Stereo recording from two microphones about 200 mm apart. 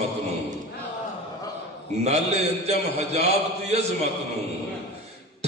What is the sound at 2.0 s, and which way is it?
A man's voice, 35° right (ahead or behind).